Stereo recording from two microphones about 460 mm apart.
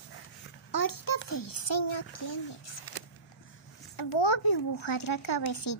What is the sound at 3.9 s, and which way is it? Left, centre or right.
A child's voice, left.